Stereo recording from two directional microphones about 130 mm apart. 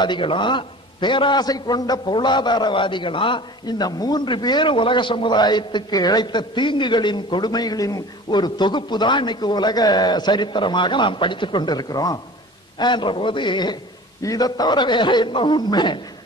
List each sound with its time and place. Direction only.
0.0 s a man's voice: 40° left (ahead or behind)